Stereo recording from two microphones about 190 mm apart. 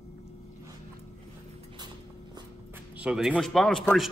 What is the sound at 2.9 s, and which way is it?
A man's voice, 5° right (ahead or behind).